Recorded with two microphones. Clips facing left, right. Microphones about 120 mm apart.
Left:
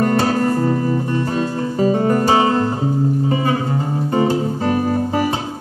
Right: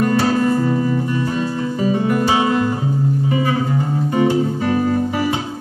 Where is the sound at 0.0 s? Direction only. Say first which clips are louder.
Even; 45° left (ahead or behind).